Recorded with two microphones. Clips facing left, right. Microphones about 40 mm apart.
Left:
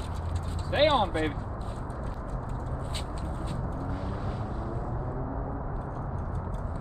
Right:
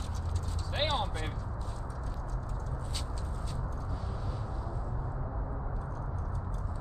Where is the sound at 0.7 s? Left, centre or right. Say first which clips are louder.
Left 9 dB; left.